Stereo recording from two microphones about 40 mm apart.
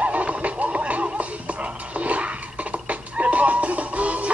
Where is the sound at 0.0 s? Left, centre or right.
Right.